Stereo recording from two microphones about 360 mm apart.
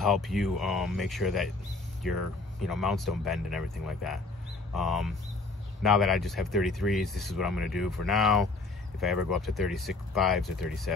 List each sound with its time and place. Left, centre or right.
0.0 s speech: centre
2.6 s speech: centre